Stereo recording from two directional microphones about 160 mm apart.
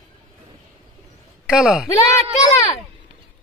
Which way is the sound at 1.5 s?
Centre (ahead or behind).